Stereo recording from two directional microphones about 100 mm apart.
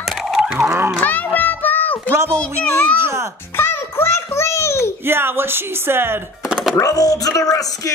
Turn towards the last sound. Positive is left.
turn(degrees=35)  # may be behind; listen again after turning